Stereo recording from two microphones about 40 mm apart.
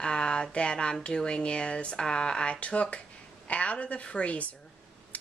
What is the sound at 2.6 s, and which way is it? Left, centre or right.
A woman's voice, left.